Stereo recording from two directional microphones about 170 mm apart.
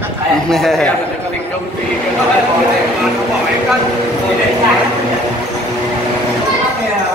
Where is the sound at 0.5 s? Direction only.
Centre (ahead or behind).